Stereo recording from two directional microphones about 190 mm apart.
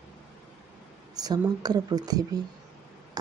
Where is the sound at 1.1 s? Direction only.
20° right (ahead or behind).